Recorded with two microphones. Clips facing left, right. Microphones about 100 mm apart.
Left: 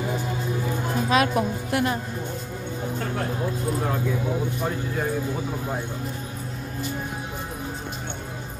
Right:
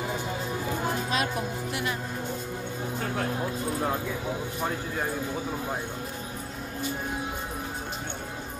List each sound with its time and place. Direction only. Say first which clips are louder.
1.1 s music: left 7 dB; 90° left